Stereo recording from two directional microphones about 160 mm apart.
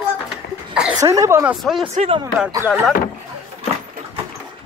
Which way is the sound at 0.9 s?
20° right (ahead or behind).